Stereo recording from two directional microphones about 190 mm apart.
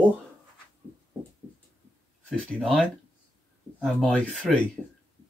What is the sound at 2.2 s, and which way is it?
Speech, 5° left (ahead or behind).